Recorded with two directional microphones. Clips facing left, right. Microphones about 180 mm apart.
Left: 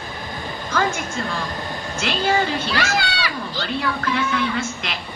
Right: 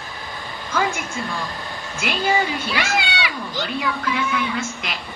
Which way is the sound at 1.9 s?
5° right (ahead or behind).